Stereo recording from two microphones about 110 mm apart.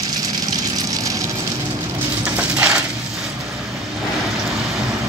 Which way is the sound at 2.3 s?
10° right (ahead or behind).